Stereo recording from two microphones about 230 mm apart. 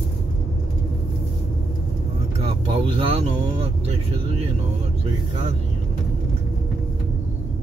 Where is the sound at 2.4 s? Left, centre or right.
Right.